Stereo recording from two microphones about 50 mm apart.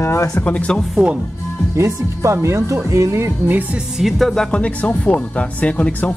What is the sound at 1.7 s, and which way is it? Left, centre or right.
Speech, right.